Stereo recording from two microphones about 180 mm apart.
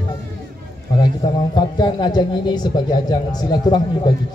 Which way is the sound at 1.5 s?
25° left (ahead or behind).